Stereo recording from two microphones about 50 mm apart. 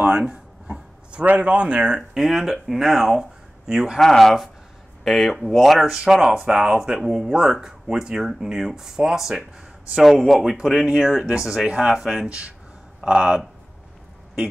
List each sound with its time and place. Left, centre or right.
0.0 s a sound: centre
1.2 s speech: right; by 4.0 s centre
4.0 s speech: centre
5.9 s speech: centre
10.6 s speech: centre
12.0 s speech: centre
12.3 s speech: right